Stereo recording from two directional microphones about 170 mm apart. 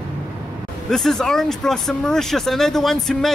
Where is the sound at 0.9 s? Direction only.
5° left (ahead or behind).